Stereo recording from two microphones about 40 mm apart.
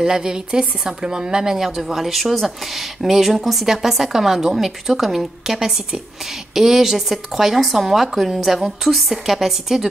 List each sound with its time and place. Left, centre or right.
0.0 s speech: centre
1.8 s speech: centre